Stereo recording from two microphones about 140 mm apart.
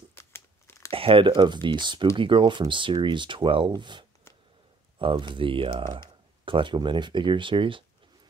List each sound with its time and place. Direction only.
0.1 s crumpling: 15° left (ahead or behind)
0.9 s speech: 40° right (ahead or behind)